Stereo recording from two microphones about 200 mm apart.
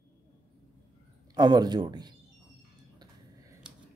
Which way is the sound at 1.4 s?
20° right (ahead or behind).